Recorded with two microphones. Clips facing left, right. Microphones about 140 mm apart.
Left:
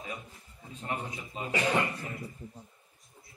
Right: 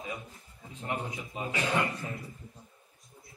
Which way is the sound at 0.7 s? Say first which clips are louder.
Right 1 dB; 15° right (ahead or behind).